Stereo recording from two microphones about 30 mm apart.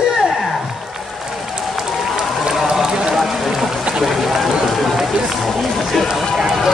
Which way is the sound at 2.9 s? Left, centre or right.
Right.